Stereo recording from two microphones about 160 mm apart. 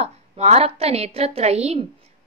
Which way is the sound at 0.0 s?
40° right (ahead or behind).